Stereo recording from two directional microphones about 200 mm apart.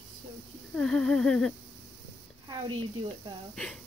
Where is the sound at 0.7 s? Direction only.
5° left (ahead or behind).